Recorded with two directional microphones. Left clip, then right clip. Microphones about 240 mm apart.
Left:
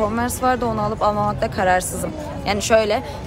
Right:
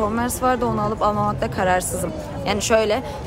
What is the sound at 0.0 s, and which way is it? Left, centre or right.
Speech, centre.